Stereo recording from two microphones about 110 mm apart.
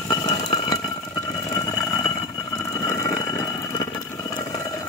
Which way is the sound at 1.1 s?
30° left (ahead or behind).